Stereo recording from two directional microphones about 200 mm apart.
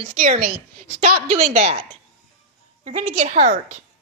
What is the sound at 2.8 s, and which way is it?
Speech, 35° right (ahead or behind).